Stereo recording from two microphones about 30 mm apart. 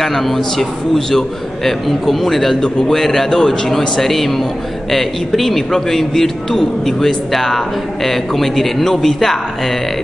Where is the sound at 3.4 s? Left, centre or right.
Left.